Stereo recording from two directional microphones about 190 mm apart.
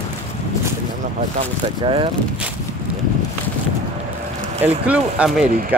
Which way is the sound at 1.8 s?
25° right (ahead or behind).